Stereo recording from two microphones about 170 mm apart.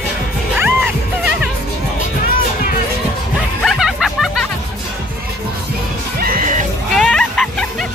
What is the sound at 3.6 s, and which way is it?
Music, centre (ahead or behind).